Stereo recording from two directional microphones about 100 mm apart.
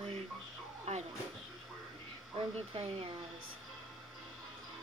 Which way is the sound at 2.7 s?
70° right (ahead or behind).